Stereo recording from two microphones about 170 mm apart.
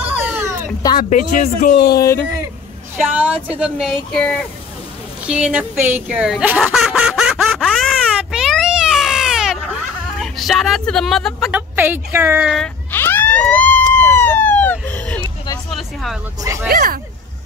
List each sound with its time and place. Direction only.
0.0 s a sound: 10° right (ahead or behind)
0.9 s speech: 50° left (ahead or behind)
2.0 s speech: 15° left (ahead or behind)
3.0 s speech: 10° right (ahead or behind)
5.2 s a sound: 5° right (ahead or behind)
11.7 s speech: 10° right (ahead or behind)
12.5 s a sound: 10° left (ahead or behind)
15.7 s vehicle: centre (ahead or behind)
16.6 s speech: 60° right (ahead or behind)